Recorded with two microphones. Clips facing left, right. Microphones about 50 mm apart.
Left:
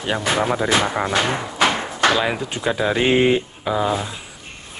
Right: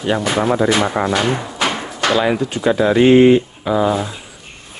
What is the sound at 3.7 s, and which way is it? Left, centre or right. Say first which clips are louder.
Speech: right 4 dB; centre.